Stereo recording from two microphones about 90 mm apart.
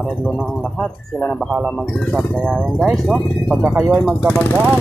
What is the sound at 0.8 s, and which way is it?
A man's voice, 10° left (ahead or behind).